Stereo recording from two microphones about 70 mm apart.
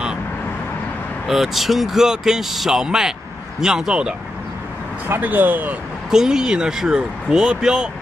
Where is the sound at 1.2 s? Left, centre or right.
Centre.